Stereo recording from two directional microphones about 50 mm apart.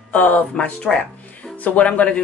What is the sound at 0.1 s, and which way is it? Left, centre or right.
A woman's voice, left.